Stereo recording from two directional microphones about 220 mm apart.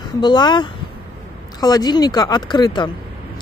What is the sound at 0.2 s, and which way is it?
Speech, 20° left (ahead or behind).